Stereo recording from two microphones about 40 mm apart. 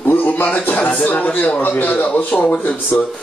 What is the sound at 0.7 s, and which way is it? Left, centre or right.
Speech, left.